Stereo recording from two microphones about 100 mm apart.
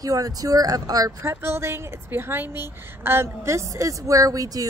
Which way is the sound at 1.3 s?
25° right (ahead or behind).